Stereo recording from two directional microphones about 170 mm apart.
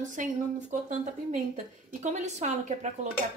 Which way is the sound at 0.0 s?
50° right (ahead or behind).